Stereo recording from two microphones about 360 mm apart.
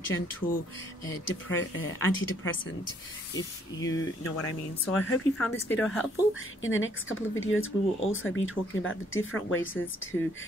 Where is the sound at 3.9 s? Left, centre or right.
Left.